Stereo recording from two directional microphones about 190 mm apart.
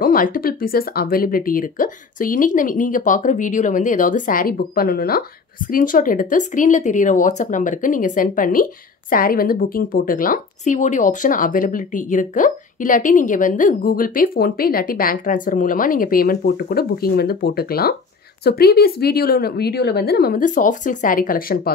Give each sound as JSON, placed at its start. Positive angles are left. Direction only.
{"t": 0.0, "sound": "a woman's voice", "side_deg": 45}